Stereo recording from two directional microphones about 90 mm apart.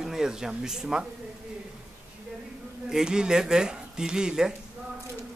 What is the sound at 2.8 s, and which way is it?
Speech, 5° right (ahead or behind).